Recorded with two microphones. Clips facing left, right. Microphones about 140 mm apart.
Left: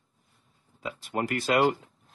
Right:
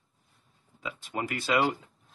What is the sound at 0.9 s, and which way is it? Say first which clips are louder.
Speech: left 4 dB; centre (ahead or behind).